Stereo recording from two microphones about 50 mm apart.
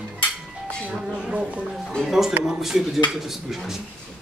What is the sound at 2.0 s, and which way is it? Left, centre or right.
Speech, centre.